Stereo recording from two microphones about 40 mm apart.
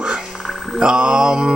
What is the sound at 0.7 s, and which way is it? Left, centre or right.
Speech, right.